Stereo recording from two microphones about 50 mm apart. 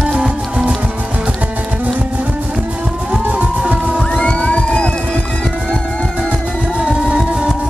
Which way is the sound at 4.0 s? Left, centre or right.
Centre.